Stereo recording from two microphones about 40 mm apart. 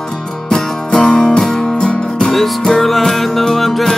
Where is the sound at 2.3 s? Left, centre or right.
Centre.